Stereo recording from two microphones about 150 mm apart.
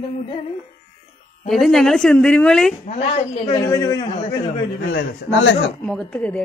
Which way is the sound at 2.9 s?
45° left (ahead or behind).